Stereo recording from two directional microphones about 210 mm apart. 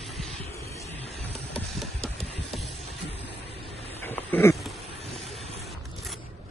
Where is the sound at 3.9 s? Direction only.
10° left (ahead or behind).